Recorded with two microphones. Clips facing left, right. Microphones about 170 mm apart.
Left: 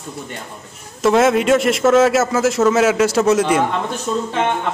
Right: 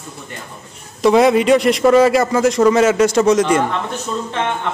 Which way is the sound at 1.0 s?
Centre (ahead or behind).